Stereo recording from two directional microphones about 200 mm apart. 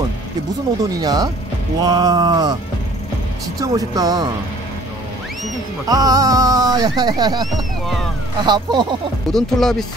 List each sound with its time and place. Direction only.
0.7 s speech: 20° right (ahead or behind)
3.6 s speech: 20° right (ahead or behind)
5.9 s speech: 20° right (ahead or behind)
8.5 s speech: 20° right (ahead or behind)
9.3 s speech: centre (ahead or behind)